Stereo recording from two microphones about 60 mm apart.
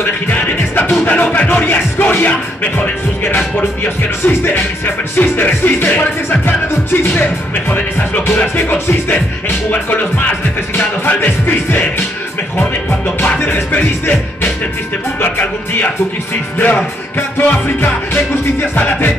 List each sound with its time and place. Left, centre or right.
0.0 s music: left
13.4 s music: left